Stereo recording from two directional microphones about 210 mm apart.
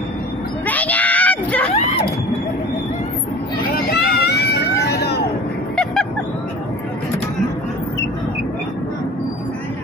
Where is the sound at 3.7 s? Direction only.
50° left (ahead or behind).